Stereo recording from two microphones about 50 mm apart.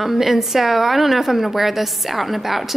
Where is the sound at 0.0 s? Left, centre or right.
Centre.